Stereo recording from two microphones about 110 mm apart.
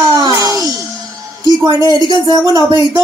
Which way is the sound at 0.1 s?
35° right (ahead or behind).